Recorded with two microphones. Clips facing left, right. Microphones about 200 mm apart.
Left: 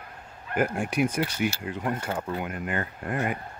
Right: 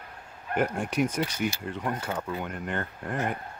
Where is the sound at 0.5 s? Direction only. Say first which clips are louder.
Left 1 dB; 5° left (ahead or behind).